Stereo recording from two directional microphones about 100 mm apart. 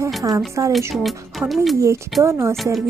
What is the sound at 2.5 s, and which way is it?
Speech, centre (ahead or behind).